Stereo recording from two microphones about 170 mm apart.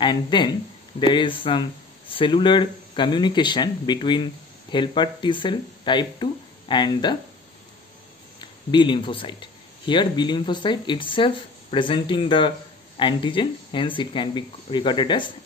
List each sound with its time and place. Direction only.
0.0 s speech: 25° left (ahead or behind)
8.4 s speech: 30° left (ahead or behind)